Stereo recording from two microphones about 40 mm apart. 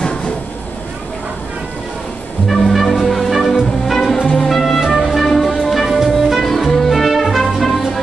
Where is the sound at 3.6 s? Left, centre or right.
Centre.